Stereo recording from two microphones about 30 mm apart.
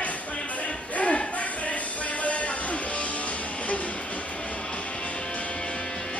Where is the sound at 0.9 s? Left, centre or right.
Left.